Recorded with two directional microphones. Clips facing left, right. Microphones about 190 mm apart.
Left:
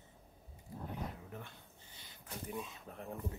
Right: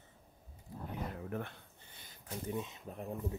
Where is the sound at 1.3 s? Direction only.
60° right (ahead or behind).